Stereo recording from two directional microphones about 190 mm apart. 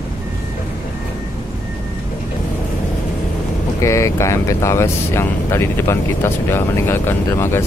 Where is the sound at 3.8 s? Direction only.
15° left (ahead or behind).